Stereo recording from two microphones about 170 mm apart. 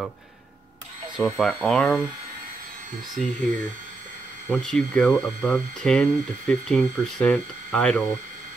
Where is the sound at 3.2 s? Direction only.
Centre (ahead or behind).